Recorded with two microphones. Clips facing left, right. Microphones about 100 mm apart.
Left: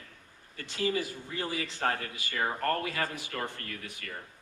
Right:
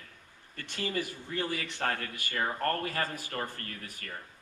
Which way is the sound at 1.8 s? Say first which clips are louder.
Left 2 dB; 45° left (ahead or behind).